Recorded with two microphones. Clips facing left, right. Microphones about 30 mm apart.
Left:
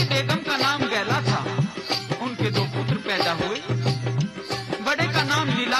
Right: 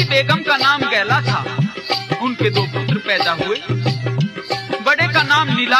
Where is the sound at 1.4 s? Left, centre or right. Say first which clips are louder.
Right 5 dB; right.